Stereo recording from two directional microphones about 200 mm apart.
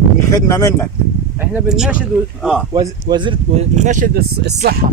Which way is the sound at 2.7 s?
20° right (ahead or behind).